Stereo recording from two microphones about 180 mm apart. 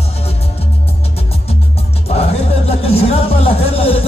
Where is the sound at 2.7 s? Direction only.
35° left (ahead or behind).